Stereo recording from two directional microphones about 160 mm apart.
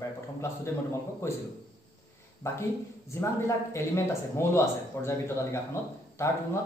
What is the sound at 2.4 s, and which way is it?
A man's voice, 15° left (ahead or behind).